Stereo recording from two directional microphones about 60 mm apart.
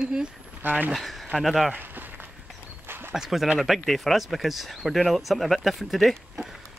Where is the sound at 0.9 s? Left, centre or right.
Centre.